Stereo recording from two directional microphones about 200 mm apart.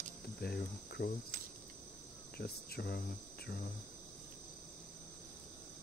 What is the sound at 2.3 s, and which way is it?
Cricket, 50° left (ahead or behind).